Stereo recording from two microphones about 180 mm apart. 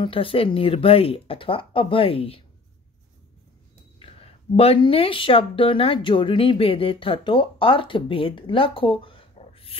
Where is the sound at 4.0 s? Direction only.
35° left (ahead or behind).